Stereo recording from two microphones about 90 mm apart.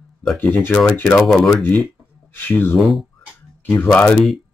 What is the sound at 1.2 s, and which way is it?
Speech, 5° left (ahead or behind).